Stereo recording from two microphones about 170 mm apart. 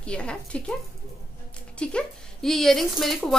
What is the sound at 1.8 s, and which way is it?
Speech, 5° left (ahead or behind).